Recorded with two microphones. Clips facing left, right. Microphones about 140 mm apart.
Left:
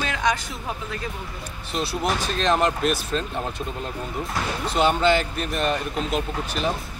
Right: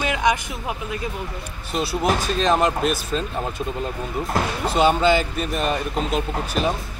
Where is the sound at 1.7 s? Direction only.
Centre (ahead or behind).